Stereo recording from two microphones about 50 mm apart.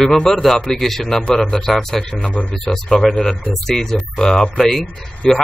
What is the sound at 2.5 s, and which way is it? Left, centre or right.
Speech, centre.